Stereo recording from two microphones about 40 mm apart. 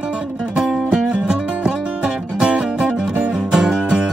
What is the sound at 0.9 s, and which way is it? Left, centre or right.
Music, centre.